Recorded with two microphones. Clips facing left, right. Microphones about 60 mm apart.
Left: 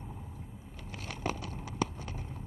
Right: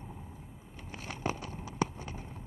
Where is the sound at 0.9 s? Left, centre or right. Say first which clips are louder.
Even; right.